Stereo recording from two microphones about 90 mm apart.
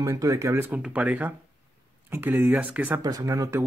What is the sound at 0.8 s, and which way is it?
Speech, 15° right (ahead or behind).